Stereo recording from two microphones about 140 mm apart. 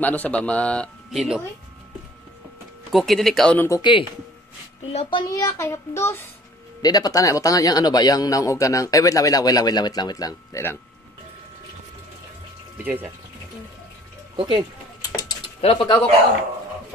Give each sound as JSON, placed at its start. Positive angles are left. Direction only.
{"t": 0.0, "sound": "a man's voice", "side_deg": 10}
{"t": 2.9, "sound": "speech", "side_deg": 0}
{"t": 3.5, "sound": "speech", "side_deg": 20}
{"t": 3.8, "sound": "speech", "side_deg": 35}
{"t": 5.2, "sound": "speech", "side_deg": 25}
{"t": 12.7, "sound": "speech", "side_deg": -15}
{"t": 14.3, "sound": "speech", "side_deg": -35}
{"t": 15.0, "sound": "bird", "side_deg": 25}
{"t": 15.4, "sound": "typing", "side_deg": 40}